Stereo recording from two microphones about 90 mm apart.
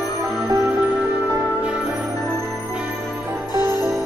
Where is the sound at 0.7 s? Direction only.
20° right (ahead or behind).